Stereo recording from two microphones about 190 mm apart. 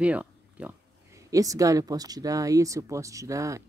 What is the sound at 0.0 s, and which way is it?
Speech, 5° right (ahead or behind).